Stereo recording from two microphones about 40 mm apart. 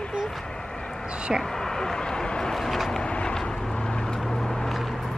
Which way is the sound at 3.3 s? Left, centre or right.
Centre.